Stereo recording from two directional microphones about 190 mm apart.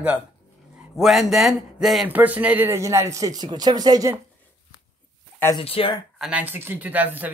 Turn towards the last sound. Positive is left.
turn(degrees=-10)  # may be behind; listen again after turning